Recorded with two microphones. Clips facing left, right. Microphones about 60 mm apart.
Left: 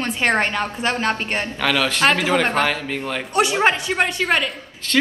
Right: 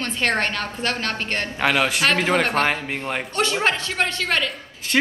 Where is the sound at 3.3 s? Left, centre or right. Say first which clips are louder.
Left 5 dB; centre.